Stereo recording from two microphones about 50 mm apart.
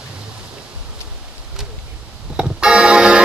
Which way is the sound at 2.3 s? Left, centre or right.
Centre.